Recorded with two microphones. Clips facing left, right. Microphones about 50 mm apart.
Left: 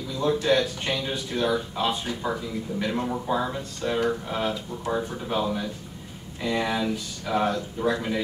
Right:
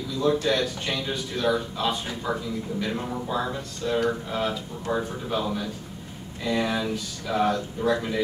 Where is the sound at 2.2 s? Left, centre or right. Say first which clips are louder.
Right 2 dB; centre.